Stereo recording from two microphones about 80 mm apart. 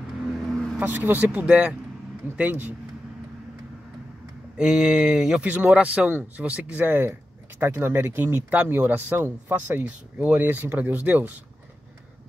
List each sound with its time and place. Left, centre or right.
0.2 s vehicle: centre
0.7 s speech: right
4.6 s speech: centre
5.4 s speech: centre